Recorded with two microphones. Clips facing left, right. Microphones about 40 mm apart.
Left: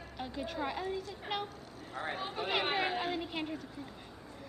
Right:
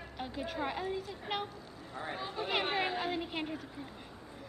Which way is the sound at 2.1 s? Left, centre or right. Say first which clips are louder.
Right 1 dB; left.